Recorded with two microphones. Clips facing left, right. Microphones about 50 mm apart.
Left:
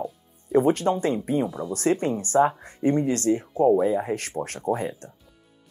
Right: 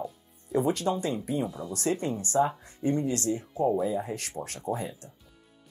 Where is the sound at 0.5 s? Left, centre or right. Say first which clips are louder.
Left 6 dB; left.